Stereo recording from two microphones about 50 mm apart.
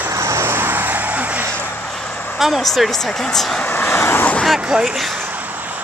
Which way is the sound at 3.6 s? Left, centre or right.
Left.